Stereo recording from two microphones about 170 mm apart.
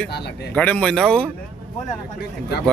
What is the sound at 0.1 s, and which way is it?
Speech, 75° left (ahead or behind).